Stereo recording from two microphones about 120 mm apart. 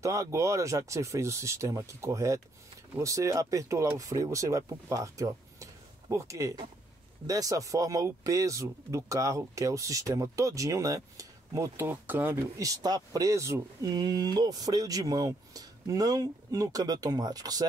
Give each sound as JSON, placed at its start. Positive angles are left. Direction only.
{"t": 0.0, "sound": "speech", "side_deg": -25}